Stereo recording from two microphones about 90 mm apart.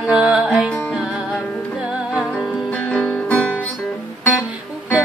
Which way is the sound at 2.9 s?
15° left (ahead or behind).